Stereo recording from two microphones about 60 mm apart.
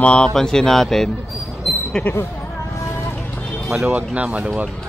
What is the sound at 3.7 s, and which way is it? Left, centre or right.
Speech, centre.